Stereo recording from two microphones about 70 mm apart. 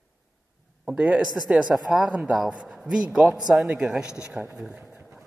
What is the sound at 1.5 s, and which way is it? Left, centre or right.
Speech, centre.